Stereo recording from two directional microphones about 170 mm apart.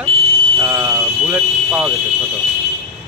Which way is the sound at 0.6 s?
15° right (ahead or behind).